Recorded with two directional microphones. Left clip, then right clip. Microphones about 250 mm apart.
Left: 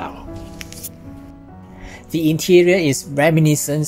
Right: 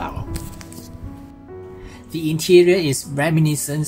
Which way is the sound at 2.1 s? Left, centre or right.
Left.